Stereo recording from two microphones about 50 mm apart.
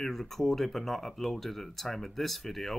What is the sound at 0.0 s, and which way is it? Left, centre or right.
Speech, centre.